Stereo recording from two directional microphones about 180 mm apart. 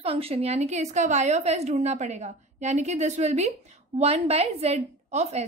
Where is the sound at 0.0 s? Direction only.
30° right (ahead or behind).